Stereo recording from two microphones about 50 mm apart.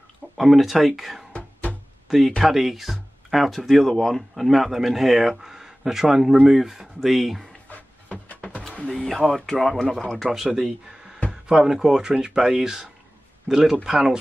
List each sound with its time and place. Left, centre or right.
0.4 s speech: centre
1.3 s music: left
2.0 s speech: centre
7.7 s a sound: left
8.9 s speech: centre
10.3 s speech: centre